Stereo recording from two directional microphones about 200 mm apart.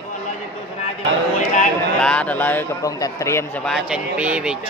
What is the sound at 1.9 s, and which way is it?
A man's voice, 5° left (ahead or behind).